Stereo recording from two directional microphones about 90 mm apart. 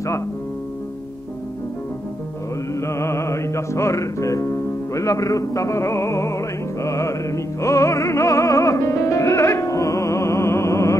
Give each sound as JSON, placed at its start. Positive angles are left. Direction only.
{"t": 2.7, "sound": "music", "side_deg": 30}